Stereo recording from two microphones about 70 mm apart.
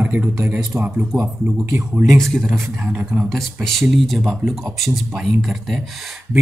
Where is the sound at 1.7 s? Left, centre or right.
Right.